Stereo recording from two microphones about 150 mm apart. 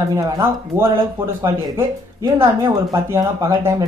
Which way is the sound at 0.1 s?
20° right (ahead or behind).